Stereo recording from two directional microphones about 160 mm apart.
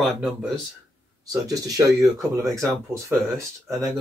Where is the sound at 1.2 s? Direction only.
25° right (ahead or behind).